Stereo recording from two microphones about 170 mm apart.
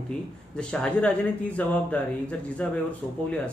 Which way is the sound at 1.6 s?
10° left (ahead or behind).